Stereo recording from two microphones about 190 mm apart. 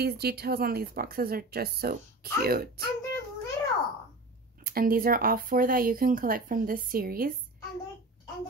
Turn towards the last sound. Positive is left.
turn(degrees=-50)  # may be behind; listen again after turning